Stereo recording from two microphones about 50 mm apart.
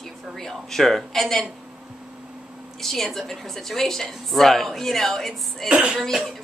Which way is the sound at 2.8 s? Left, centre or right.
Centre.